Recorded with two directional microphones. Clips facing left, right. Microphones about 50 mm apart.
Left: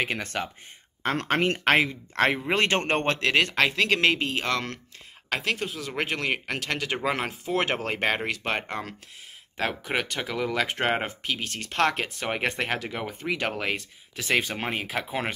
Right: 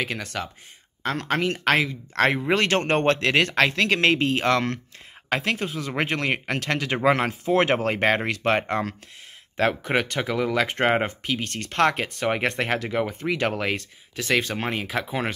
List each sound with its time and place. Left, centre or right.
0.0 s speech: left
1.7 s speech: left
3.1 s speech: centre
14.3 s speech: centre